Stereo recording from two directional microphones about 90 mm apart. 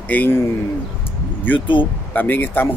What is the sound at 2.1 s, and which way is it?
Speech, 20° left (ahead or behind).